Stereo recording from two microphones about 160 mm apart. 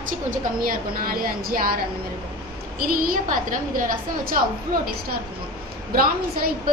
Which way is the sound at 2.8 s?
60° right (ahead or behind).